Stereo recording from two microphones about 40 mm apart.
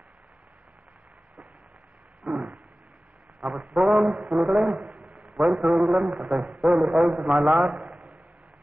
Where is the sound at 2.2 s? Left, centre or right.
Right.